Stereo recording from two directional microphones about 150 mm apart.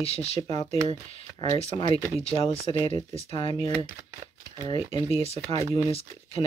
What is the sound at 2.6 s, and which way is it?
Speech, 40° left (ahead or behind).